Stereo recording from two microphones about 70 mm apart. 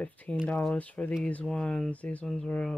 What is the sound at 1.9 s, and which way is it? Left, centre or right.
Speech, left.